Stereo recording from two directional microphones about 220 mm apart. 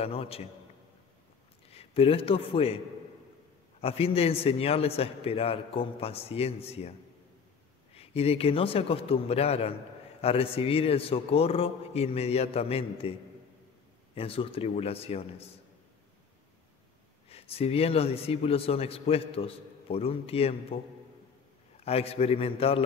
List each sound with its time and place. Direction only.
0.0 s a man's voice: 25° left (ahead or behind)
1.7 s a man's voice: 25° left (ahead or behind)
3.8 s a man's voice: 25° left (ahead or behind)
7.9 s a man's voice: 25° left (ahead or behind)
14.1 s a man's voice: 25° left (ahead or behind)
17.3 s a man's voice: 25° left (ahead or behind)
21.8 s a man's voice: 25° left (ahead or behind)